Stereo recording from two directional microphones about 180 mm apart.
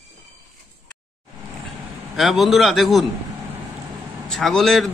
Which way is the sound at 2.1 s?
Centre (ahead or behind).